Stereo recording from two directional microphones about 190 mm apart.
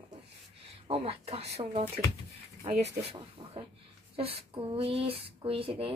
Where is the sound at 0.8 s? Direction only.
30° right (ahead or behind).